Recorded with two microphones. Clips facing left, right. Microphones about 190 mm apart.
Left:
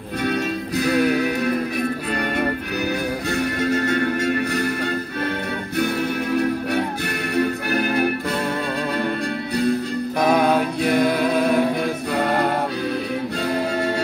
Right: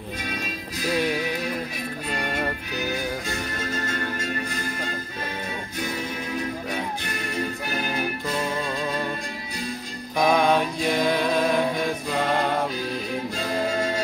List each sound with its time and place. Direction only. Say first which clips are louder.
0.2 s music: left 13 dB; 65° left (ahead or behind)
3.3 s music: left 9 dB; 65° left (ahead or behind)
6.3 s music: left 9 dB; 65° left (ahead or behind)
10.2 s music: left 2 dB; 5° left (ahead or behind)
10.8 s music: left 5 dB; 65° left (ahead or behind)
11.1 s music: left 3 dB; 5° left (ahead or behind)